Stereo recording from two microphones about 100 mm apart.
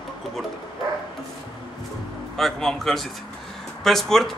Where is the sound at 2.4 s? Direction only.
5° left (ahead or behind).